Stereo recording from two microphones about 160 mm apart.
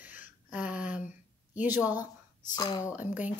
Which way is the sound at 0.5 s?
5° right (ahead or behind).